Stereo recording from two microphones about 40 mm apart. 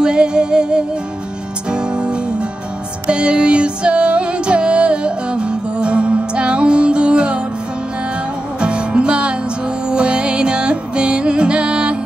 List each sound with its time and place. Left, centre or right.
0.0 s music: right
8.5 s music: right